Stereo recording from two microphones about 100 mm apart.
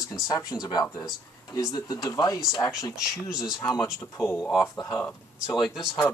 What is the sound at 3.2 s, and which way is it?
Speech, 5° right (ahead or behind).